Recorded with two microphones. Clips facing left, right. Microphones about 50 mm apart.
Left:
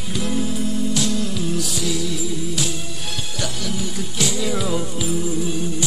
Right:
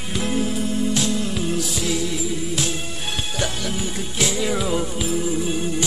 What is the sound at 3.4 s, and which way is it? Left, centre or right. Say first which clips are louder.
Music: left 1 dB; right.